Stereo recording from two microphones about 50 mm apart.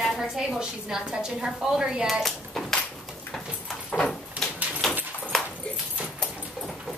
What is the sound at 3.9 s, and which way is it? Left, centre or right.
Door, left.